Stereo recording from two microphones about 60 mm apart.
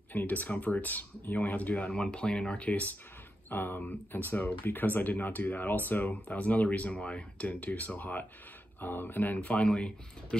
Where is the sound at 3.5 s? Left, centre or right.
Left.